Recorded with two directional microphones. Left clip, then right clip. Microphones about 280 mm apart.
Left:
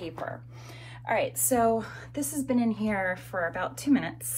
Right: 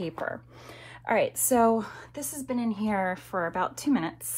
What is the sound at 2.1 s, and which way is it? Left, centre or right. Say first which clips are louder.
A woman's voice: left 4 dB; centre.